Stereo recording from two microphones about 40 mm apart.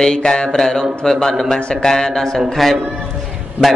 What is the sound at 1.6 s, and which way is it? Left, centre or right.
A man's voice, centre.